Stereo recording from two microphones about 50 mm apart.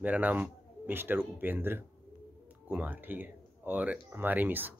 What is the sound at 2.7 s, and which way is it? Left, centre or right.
Speech, right.